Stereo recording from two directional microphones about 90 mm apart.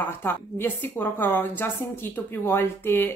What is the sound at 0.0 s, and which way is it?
Speech, 25° left (ahead or behind).